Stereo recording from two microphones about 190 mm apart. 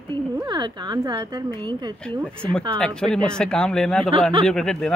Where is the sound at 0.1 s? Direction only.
20° right (ahead or behind).